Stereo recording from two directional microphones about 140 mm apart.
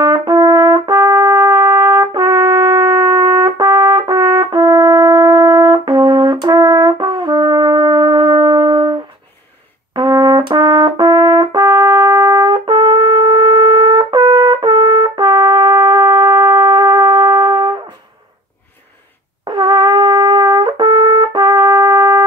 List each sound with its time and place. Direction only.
0.0 s trumpet: 30° right (ahead or behind)
9.9 s brass instrument: 30° right (ahead or behind)
19.4 s brass instrument: 30° right (ahead or behind)